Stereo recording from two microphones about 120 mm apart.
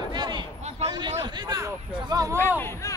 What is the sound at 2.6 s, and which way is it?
Speech, 20° left (ahead or behind).